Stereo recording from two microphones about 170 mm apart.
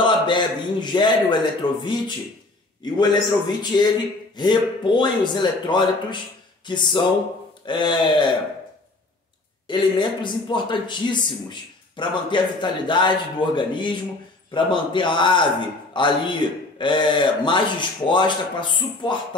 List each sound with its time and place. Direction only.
0.0 s a man's voice: 25° left (ahead or behind)
9.7 s a man's voice: 25° left (ahead or behind)